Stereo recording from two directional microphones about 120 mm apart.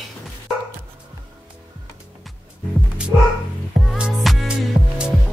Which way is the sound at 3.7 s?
5° right (ahead or behind).